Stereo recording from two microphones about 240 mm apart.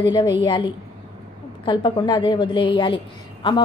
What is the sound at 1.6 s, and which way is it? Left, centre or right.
A woman's voice, centre.